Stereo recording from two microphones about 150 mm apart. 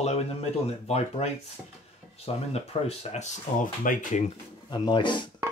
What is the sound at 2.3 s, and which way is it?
Speech, 40° left (ahead or behind).